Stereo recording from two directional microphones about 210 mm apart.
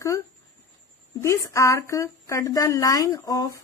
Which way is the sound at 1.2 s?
15° left (ahead or behind).